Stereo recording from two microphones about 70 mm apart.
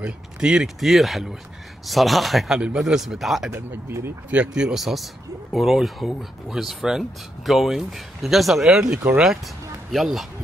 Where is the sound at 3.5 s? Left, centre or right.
Right.